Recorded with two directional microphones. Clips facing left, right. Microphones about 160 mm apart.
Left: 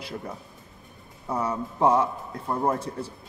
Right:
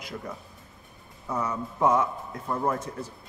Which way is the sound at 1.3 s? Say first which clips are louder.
Left 2 dB; 30° left (ahead or behind).